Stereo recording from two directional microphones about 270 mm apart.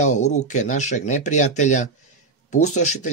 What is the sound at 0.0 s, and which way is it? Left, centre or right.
Speech, left.